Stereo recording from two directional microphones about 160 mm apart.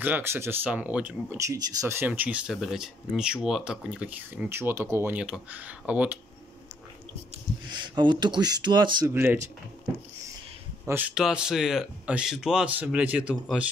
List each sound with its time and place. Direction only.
0.0 s speech: 15° right (ahead or behind)
1.4 s speech: 20° right (ahead or behind)
7.7 s speech: 30° right (ahead or behind)
9.1 s speech: 15° right (ahead or behind)
10.9 s speech: 10° right (ahead or behind)